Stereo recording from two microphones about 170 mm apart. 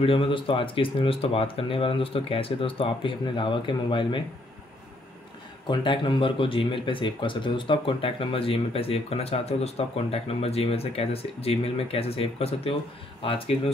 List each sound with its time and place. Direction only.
0.0 s speech: 35° left (ahead or behind)
5.7 s speech: 30° left (ahead or behind)